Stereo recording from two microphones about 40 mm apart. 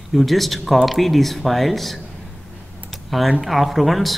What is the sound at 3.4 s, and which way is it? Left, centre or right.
Speech, centre.